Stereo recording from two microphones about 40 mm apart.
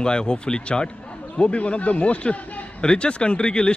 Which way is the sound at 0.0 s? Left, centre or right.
Left.